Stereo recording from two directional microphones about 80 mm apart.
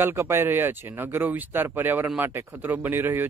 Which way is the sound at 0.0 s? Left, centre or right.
Right.